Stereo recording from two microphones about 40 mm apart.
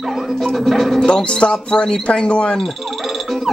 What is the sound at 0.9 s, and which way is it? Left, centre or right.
Speech, left.